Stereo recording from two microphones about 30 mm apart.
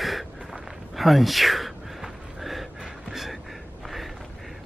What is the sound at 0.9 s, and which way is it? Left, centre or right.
Gasp, centre.